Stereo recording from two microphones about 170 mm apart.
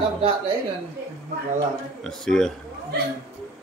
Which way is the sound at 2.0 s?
5° left (ahead or behind).